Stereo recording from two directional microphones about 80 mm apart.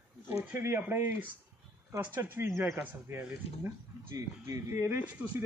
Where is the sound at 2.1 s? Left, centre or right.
Right.